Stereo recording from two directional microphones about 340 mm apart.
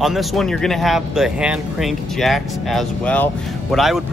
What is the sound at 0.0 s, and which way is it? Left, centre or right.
Speech, centre.